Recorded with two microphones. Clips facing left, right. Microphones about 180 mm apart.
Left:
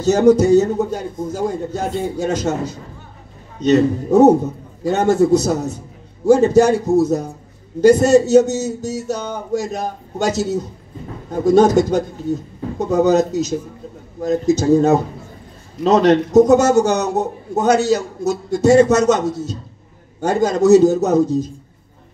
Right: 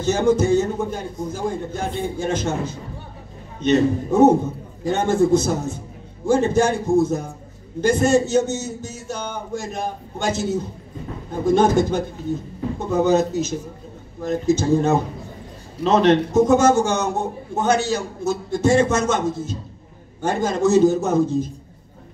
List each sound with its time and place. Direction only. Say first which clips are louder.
0.0 s a man's voice: left 6 dB; 40° left (ahead or behind)